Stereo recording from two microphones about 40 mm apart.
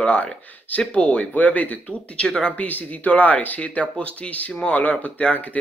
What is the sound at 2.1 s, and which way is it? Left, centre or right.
Speech, left.